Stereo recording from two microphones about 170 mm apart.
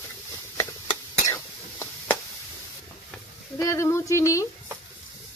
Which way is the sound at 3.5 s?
15° left (ahead or behind).